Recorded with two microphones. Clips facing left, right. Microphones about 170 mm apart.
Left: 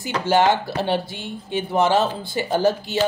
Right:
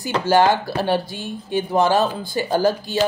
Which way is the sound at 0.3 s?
20° left (ahead or behind).